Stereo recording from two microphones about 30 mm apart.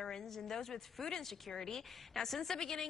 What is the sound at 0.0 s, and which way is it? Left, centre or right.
A woman's voice, centre.